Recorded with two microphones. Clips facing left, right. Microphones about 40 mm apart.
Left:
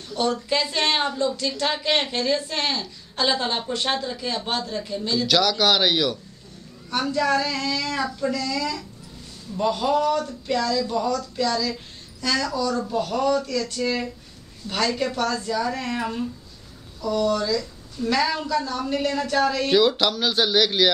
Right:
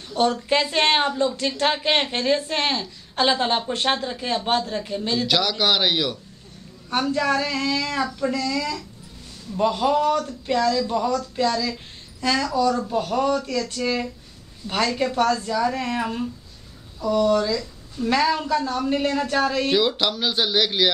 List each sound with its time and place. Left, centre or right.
0.1 s a woman's voice: right
5.2 s speech: centre
7.2 s a woman's voice: right
15.0 s a woman's voice: right
15.5 s speech: centre
17.0 s speech: right
18.5 s a woman's voice: right; by 20.9 s centre